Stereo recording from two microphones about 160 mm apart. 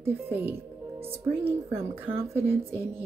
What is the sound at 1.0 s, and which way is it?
Speech, 35° right (ahead or behind).